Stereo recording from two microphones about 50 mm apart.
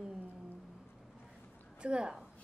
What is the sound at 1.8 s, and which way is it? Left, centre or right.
Speech, centre.